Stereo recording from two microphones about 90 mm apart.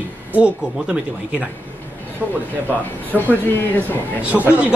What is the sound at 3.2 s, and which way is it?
Speech, 20° left (ahead or behind).